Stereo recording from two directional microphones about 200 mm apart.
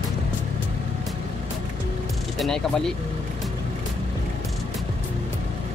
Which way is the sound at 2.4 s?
Centre (ahead or behind).